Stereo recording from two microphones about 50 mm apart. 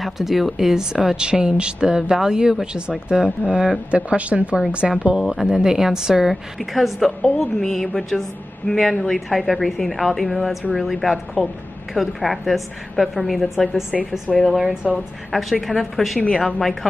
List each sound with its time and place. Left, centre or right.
0.0 s speech: centre; by 5.2 s right
5.3 s speech: centre
7.1 s a woman's voice: centre